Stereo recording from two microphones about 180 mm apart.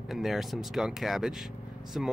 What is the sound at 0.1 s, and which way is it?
Speech, centre (ahead or behind).